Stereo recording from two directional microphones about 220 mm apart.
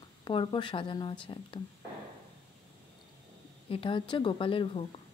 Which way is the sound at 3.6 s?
25° left (ahead or behind).